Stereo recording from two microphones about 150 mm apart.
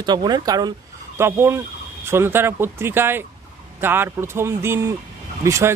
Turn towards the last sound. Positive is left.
turn(degrees=-20)  # may be behind; listen again after turning